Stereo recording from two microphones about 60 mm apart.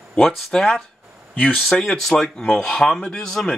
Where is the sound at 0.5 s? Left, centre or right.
Centre.